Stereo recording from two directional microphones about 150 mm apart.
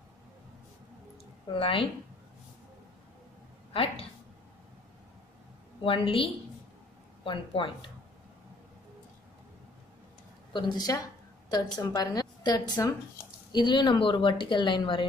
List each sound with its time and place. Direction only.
1.5 s a woman's voice: 35° left (ahead or behind)
3.7 s a woman's voice: 40° left (ahead or behind)
5.9 s a woman's voice: 35° left (ahead or behind)
10.5 s a woman's voice: 25° left (ahead or behind)